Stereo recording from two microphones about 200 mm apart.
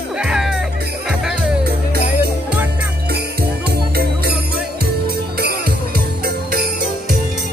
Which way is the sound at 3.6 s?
50° right (ahead or behind).